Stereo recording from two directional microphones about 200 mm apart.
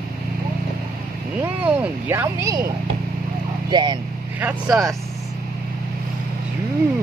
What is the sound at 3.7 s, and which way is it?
Speech, 20° right (ahead or behind).